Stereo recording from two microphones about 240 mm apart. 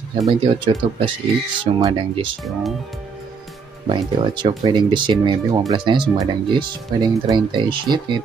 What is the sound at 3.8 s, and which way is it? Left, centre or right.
Speech, right.